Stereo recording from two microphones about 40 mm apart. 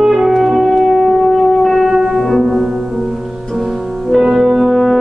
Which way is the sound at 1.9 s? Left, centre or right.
Centre.